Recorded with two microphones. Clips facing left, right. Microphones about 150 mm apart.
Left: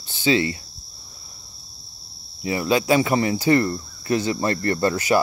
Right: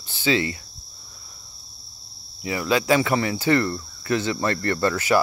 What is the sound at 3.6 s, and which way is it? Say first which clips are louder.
Cricket: left 2 dB; 30° left (ahead or behind).